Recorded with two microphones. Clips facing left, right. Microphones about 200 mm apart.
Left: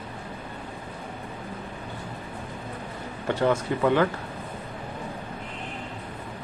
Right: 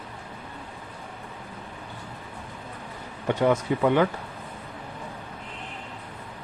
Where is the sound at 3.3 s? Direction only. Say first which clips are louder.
Right 1 dB; 15° right (ahead or behind).